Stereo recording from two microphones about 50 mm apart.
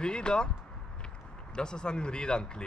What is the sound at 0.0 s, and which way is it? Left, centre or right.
Speech, centre.